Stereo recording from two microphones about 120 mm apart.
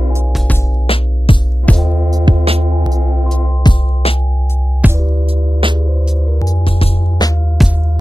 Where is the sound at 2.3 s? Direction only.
55° right (ahead or behind).